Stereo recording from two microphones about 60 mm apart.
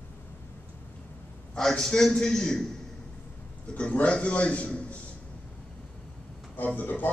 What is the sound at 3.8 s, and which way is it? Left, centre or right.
A man's voice, left.